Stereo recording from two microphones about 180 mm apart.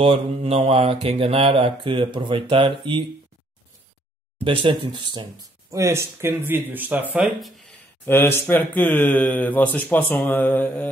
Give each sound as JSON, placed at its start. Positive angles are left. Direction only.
{"t": 0.0, "sound": "mantra", "side_deg": -30}
{"t": 4.5, "sound": "speech", "side_deg": -25}
{"t": 8.0, "sound": "speech", "side_deg": 10}